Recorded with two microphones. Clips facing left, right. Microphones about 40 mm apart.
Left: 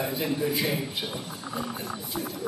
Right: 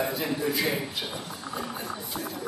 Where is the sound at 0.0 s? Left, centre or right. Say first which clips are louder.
Even; centre.